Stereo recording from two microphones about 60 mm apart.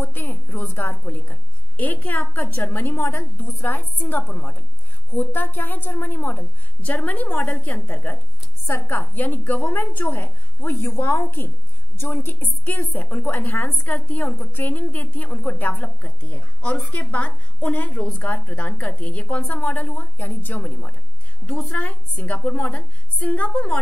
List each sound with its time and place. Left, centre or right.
0.0 s a woman's voice: left
22.2 s a woman's voice: left